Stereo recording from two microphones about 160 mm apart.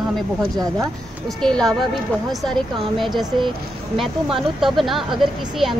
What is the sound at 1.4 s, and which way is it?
Speech, 5° left (ahead or behind).